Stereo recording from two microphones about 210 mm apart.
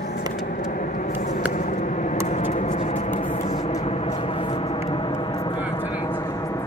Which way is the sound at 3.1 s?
35° left (ahead or behind).